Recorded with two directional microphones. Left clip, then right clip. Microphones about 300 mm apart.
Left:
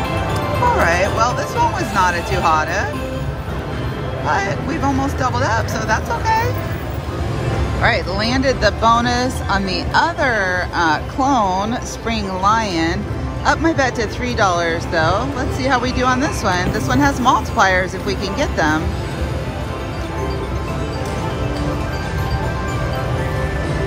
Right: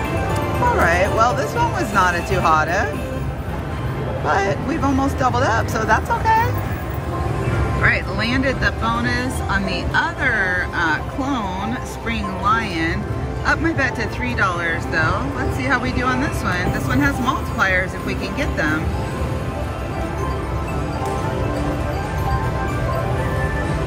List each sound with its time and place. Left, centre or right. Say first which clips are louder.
0.7 s speech: left 1 dB; centre
4.3 s speech: even; centre
7.8 s speech: left 2 dB; centre